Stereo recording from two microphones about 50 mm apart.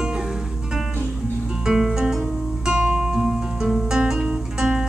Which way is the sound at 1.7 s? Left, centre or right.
Centre.